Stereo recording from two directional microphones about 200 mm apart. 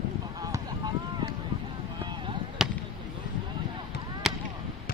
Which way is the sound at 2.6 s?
5° right (ahead or behind).